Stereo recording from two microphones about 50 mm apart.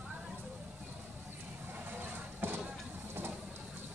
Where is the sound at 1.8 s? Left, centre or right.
Right.